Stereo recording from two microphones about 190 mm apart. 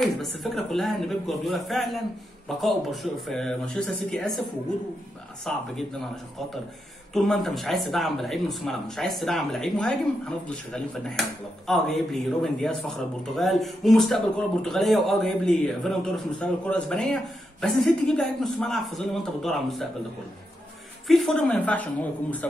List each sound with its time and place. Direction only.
0.0 s speech: centre (ahead or behind)
5.5 s speech: centre (ahead or behind)
7.2 s speech: centre (ahead or behind)
21.1 s a man's voice: 5° left (ahead or behind)